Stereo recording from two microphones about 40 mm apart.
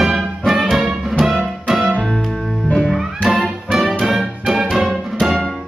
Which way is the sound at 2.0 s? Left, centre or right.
Centre.